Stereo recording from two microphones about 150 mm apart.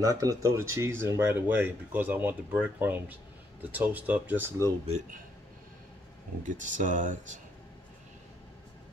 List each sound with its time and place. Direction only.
0.0 s speech: 25° right (ahead or behind)
6.4 s speech: 55° right (ahead or behind)